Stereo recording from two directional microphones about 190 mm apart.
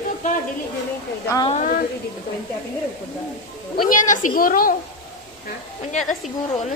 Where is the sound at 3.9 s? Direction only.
45° left (ahead or behind).